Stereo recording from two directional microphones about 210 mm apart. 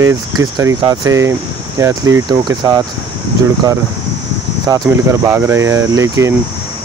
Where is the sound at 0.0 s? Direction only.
15° right (ahead or behind).